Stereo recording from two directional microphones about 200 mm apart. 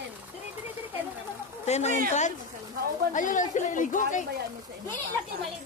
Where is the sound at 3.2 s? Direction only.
40° left (ahead or behind).